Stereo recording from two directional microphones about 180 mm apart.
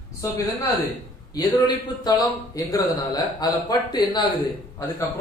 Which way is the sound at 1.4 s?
20° left (ahead or behind).